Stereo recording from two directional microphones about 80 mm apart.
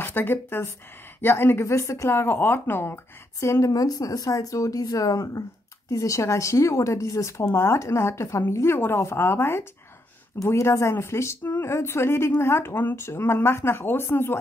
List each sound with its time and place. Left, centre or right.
0.0 s a woman's voice: left